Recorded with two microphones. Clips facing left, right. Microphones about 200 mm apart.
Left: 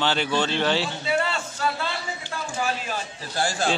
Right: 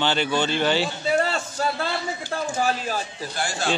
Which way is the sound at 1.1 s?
40° right (ahead or behind).